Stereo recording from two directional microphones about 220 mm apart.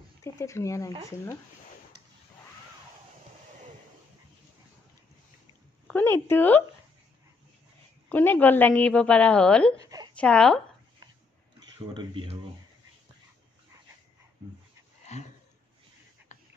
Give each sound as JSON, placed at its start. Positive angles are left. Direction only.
{"t": 0.2, "sound": "speech", "side_deg": 15}
{"t": 5.9, "sound": "a woman's voice", "side_deg": 10}
{"t": 8.1, "sound": "a woman's voice", "side_deg": 10}
{"t": 9.8, "sound": "a sound", "side_deg": -15}
{"t": 10.1, "sound": "speech", "side_deg": 5}
{"t": 11.9, "sound": "speech", "side_deg": -20}
{"t": 15.0, "sound": "a sound", "side_deg": 30}